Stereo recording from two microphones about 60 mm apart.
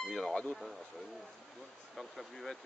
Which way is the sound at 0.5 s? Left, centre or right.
Centre.